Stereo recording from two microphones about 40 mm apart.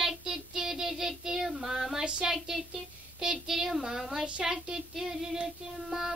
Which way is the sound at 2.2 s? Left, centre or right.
Centre.